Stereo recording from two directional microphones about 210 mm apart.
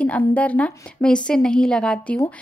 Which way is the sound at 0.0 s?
5° left (ahead or behind).